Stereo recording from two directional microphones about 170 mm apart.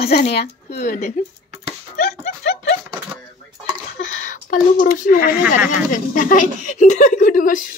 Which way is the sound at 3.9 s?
50° left (ahead or behind).